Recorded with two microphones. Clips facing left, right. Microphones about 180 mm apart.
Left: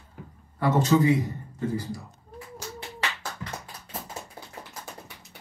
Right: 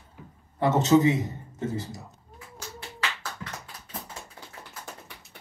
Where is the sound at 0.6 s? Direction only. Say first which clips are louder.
Right 1 dB; 20° right (ahead or behind).